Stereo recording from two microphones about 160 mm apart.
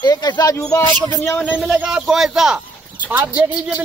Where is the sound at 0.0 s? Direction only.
25° left (ahead or behind).